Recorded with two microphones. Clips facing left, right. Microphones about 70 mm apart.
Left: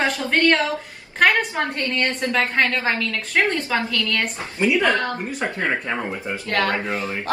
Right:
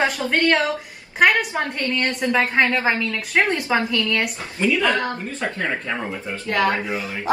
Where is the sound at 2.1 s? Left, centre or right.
Centre.